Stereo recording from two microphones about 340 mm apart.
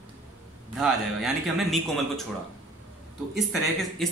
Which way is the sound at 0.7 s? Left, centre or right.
Centre.